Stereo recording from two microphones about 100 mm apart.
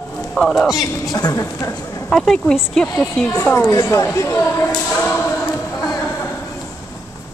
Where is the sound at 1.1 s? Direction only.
40° left (ahead or behind).